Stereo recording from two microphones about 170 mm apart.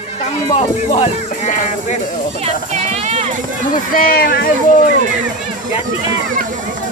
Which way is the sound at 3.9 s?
60° left (ahead or behind).